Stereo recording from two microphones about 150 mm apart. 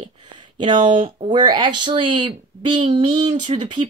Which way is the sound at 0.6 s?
30° right (ahead or behind).